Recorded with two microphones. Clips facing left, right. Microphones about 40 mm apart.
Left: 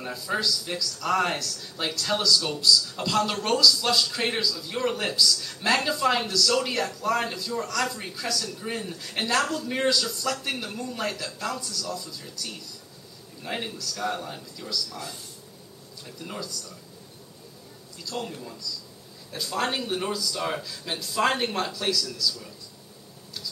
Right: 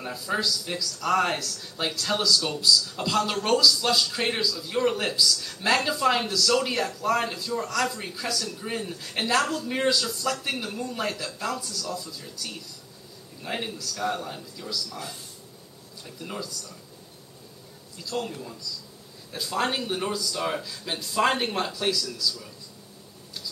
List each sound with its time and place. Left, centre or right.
0.0 s speech: centre
16.2 s speech: centre
17.9 s speech: centre